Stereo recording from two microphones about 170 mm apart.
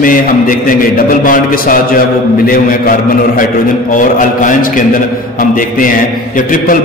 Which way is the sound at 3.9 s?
50° left (ahead or behind).